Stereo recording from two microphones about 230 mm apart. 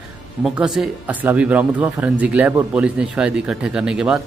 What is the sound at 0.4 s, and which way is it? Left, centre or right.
Speech, centre.